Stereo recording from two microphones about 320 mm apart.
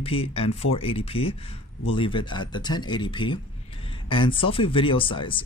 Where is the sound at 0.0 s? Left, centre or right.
Centre.